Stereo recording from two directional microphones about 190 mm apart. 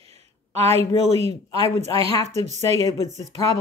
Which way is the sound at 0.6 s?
35° right (ahead or behind).